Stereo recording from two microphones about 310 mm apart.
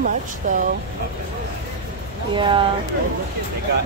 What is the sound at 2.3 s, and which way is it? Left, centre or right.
Speech, centre.